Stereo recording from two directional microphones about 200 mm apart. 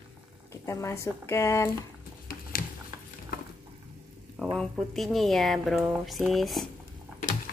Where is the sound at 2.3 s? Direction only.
45° left (ahead or behind).